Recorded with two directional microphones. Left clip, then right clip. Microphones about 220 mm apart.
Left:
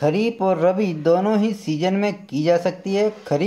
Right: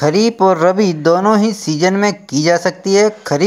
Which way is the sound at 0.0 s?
20° right (ahead or behind).